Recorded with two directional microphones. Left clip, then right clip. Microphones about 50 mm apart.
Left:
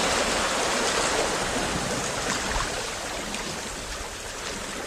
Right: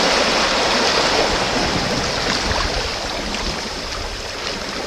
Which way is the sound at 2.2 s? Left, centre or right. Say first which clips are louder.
Right 8 dB; left.